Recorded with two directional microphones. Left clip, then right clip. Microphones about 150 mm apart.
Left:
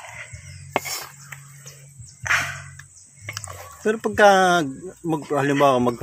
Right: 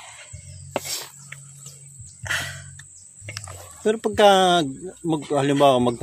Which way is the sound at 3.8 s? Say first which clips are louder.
Left 1 dB; 20° right (ahead or behind).